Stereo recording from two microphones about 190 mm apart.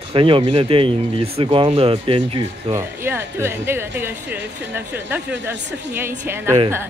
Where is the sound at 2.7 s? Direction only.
10° right (ahead or behind).